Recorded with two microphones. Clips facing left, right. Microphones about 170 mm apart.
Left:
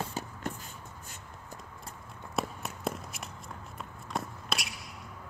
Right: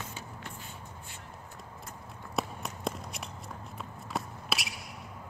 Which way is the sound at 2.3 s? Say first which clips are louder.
Even; centre (ahead or behind).